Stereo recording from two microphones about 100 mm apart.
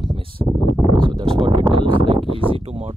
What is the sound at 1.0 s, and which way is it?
Speech, 55° right (ahead or behind).